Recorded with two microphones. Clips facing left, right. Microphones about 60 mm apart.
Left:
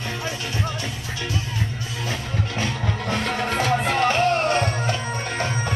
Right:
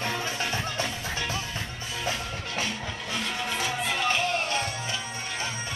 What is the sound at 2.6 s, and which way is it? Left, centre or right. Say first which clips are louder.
Music: left 6 dB; left.